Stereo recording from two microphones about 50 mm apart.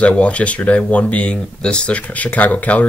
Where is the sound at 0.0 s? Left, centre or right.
Left.